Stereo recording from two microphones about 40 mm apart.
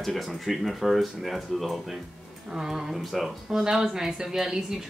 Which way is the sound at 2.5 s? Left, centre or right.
Centre.